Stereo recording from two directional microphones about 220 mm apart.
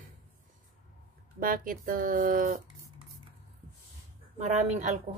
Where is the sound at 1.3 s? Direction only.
40° right (ahead or behind).